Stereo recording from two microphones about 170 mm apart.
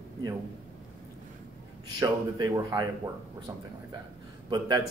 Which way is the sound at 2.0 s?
20° right (ahead or behind).